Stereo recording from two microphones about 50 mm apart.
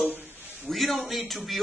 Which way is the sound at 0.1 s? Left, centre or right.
Right.